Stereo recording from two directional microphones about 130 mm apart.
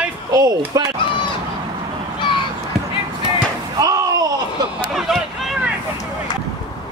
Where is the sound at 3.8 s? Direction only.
30° right (ahead or behind).